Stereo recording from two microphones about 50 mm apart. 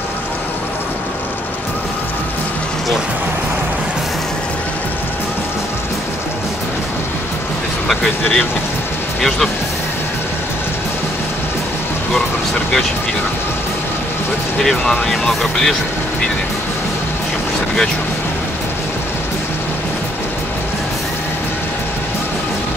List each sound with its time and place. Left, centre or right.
8.2 s speech: left
14.6 s speech: centre